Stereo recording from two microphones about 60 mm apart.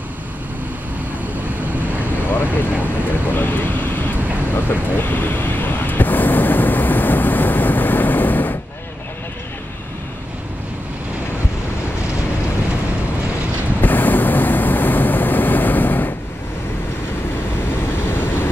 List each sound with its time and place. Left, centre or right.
2.0 s vehicle: left
13.7 s vehicle: left